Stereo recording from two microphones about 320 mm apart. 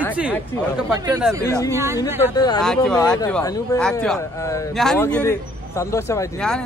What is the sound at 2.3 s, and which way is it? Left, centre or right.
Speech, centre.